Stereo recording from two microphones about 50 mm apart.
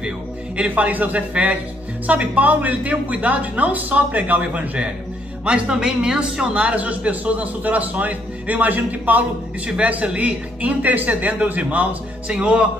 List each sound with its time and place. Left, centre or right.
0.6 s a woman's voice: right
12.3 s a man's voice: right